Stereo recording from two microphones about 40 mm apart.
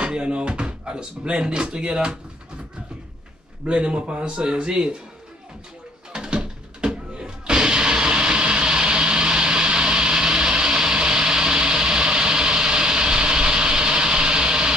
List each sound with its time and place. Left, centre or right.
0.0 s speech: right
3.6 s speech: right
6.1 s music: centre